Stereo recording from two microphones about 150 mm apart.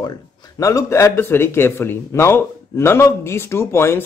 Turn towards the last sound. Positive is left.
turn(degrees=15)  # may be behind; listen again after turning